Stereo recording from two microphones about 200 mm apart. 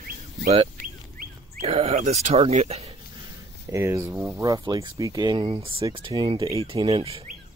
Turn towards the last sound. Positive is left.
turn(degrees=-30)  # may be behind; listen again after turning